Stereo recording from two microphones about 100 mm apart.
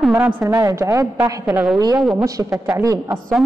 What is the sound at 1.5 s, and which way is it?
Speech, 10° right (ahead or behind).